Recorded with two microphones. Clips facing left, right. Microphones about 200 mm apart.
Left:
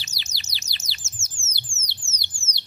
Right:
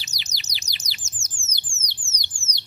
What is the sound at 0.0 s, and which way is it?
Bird, 15° right (ahead or behind).